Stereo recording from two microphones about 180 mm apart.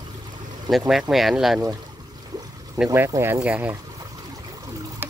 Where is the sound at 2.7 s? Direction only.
10° right (ahead or behind).